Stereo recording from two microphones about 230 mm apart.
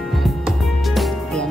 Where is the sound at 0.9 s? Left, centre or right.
Centre.